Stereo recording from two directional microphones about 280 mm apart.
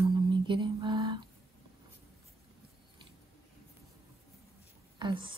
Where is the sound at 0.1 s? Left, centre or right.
Centre.